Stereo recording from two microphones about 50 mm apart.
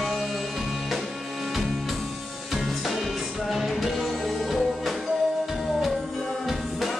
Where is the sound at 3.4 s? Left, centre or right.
Centre.